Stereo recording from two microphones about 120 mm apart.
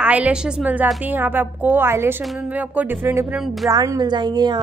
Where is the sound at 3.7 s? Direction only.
30° right (ahead or behind).